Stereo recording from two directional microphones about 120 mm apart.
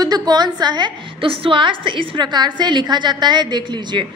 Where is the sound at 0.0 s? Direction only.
35° right (ahead or behind).